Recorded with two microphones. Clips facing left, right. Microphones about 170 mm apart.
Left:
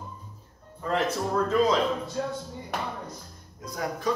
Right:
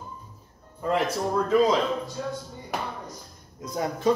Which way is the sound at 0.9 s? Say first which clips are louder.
Even; 10° right (ahead or behind).